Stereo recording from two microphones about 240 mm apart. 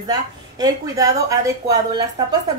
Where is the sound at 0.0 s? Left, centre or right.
Centre.